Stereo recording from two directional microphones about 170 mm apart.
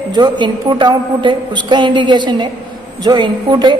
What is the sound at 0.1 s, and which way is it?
A woman's voice, 25° right (ahead or behind).